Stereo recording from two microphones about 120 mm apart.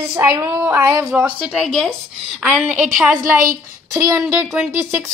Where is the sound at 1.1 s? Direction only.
10° right (ahead or behind).